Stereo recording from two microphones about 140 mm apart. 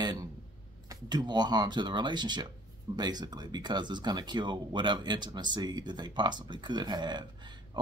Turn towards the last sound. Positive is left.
turn(degrees=-30)  # may be behind; listen again after turning